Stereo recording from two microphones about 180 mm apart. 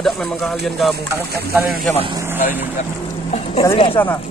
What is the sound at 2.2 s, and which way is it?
Speech, 10° right (ahead or behind).